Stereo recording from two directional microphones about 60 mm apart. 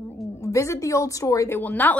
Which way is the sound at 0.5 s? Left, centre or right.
Left.